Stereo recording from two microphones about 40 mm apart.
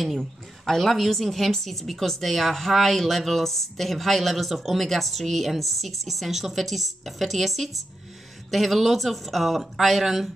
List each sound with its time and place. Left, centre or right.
0.2 s a woman's voice: centre